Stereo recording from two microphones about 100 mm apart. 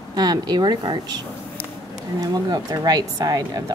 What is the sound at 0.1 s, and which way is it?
Speech, 45° right (ahead or behind).